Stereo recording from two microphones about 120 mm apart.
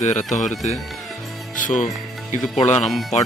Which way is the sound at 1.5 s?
90° left.